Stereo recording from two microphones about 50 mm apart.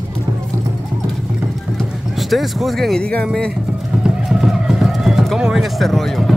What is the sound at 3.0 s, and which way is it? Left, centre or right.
Speech, left.